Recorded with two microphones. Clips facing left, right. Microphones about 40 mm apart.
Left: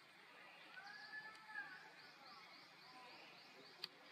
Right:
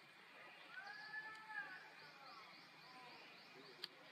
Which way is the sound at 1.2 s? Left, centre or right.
Centre.